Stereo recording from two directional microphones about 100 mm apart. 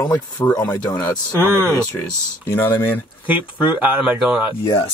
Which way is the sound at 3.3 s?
15° right (ahead or behind).